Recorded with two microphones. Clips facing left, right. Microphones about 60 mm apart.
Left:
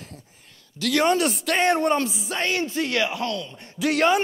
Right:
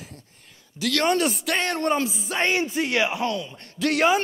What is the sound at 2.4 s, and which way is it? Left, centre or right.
Speech, right.